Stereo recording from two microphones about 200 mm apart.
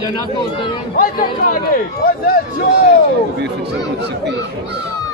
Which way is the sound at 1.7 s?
50° left (ahead or behind).